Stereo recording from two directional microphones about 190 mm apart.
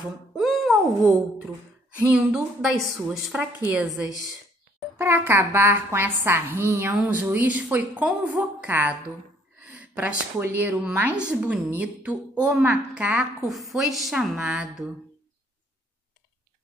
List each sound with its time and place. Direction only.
0.4 s a sound: centre (ahead or behind)
2.0 s a woman's voice: 5° right (ahead or behind)
4.9 s a woman's voice: 10° right (ahead or behind)